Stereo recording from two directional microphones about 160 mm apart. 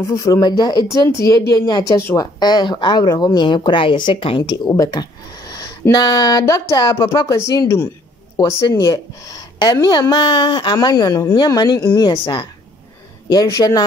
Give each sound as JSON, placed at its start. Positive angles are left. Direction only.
{"t": 0.1, "sound": "a woman's voice", "side_deg": 20}